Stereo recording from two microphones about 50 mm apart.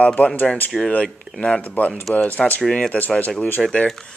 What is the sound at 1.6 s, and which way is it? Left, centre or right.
Speech, left.